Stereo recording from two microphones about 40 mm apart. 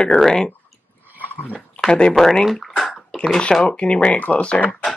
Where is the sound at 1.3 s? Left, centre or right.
Left.